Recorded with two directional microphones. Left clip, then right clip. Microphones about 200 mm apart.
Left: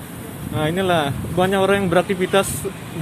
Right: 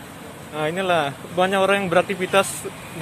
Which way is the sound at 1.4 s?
15° right (ahead or behind).